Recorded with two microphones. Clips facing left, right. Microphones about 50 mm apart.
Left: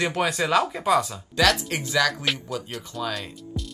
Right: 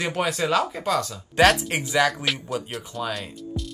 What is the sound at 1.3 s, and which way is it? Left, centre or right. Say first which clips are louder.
Speech: right 3 dB; right.